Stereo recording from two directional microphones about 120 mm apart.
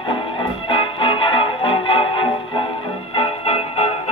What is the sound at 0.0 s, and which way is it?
Music, 45° left (ahead or behind).